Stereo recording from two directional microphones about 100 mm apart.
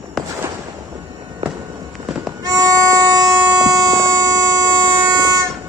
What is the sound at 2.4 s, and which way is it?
Music, 35° right (ahead or behind).